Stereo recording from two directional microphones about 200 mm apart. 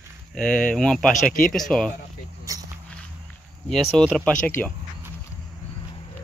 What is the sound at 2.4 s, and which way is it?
Walk, 15° right (ahead or behind).